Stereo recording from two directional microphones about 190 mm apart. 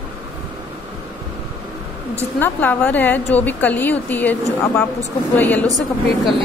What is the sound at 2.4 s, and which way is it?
A woman's voice, 10° left (ahead or behind).